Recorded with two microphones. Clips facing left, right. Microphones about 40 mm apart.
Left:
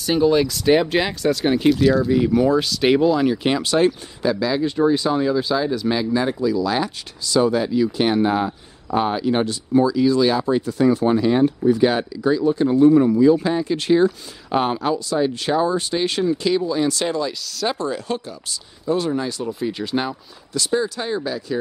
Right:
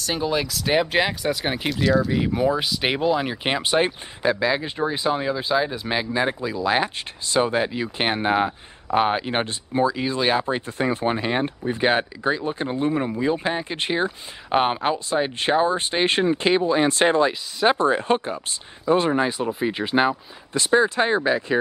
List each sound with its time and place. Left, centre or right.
0.0 s speech: centre
1.7 s speech: centre; by 21.5 s right